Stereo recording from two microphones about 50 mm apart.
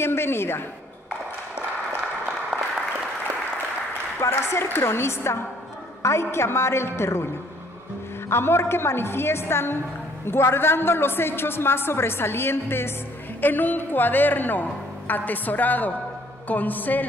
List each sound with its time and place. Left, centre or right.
0.0 s a woman's voice: left
2.5 s applause: centre
4.3 s a woman's voice: left
8.3 s a woman's voice: left
13.4 s a woman's voice: left